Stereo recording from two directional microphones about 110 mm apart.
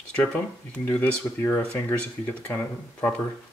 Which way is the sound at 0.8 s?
15° left (ahead or behind).